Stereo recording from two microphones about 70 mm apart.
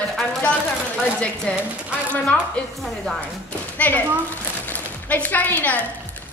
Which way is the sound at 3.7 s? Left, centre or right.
Left.